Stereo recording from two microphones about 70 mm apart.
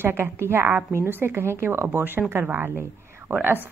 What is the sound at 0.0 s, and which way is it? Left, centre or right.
A woman's voice, right.